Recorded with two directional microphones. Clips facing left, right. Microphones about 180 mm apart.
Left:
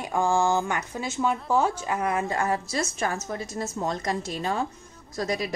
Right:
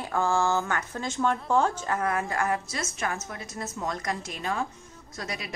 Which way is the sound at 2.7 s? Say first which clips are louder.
Left 4 dB; 35° left (ahead or behind).